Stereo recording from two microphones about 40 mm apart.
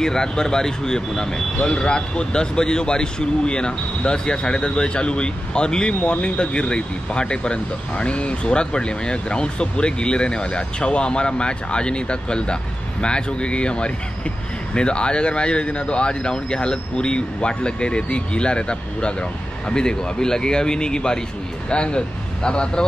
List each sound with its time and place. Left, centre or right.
0.0 s speech: centre